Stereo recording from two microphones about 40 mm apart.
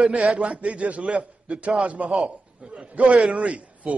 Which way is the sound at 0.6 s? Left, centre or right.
Right.